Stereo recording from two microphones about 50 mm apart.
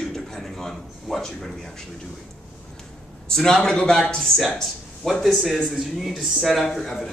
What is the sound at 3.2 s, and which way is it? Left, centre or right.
Speech, centre.